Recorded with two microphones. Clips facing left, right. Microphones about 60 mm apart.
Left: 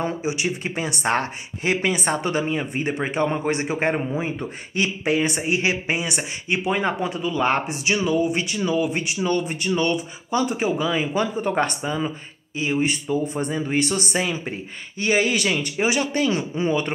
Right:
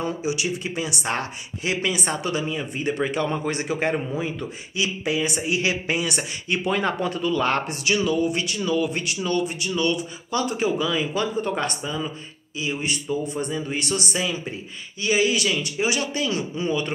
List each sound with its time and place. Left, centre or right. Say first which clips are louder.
0.0 s speech: left 1 dB; left
4.7 s speech: left 3 dB; left